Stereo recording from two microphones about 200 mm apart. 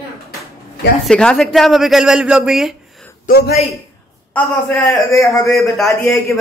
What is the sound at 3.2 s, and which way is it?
Speech, 50° left (ahead or behind).